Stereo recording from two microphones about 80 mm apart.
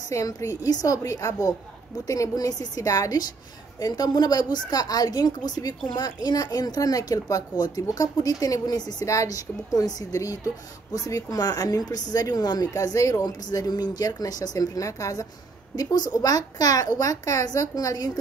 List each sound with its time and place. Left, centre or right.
0.1 s a woman's voice: left